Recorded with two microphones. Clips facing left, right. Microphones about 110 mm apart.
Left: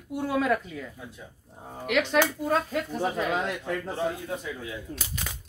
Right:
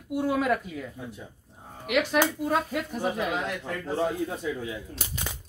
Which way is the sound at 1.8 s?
5° right (ahead or behind).